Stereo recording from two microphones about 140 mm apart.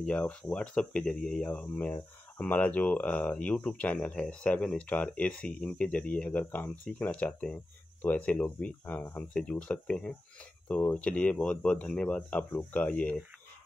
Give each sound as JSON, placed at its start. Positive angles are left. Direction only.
{"t": 0.0, "sound": "speech", "side_deg": 10}